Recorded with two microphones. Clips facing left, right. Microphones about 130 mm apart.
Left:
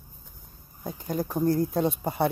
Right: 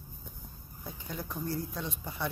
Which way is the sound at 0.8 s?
45° left (ahead or behind).